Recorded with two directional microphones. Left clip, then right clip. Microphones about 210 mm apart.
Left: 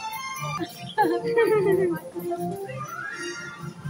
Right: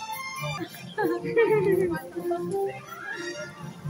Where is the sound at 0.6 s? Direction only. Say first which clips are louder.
Left 9 dB; 60° left (ahead or behind).